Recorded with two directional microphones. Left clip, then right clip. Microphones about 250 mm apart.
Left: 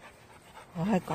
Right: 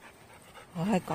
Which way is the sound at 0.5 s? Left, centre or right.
Centre.